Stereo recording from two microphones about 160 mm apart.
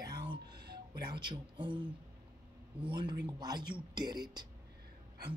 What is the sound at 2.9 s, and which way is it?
Speech, 30° right (ahead or behind).